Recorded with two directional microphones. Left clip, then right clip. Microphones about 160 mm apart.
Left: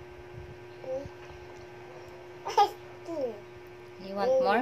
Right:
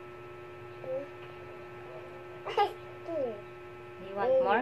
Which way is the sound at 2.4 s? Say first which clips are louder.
Left 5 dB; 10° left (ahead or behind).